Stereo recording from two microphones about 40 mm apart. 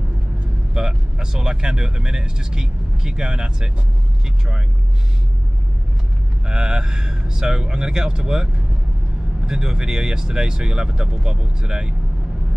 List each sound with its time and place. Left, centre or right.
0.7 s speech: centre
6.4 s speech: right
9.5 s speech: centre